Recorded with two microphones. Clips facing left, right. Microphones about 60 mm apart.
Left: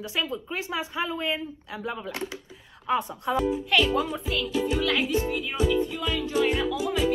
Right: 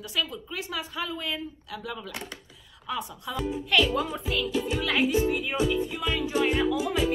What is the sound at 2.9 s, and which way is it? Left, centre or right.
Speech, left.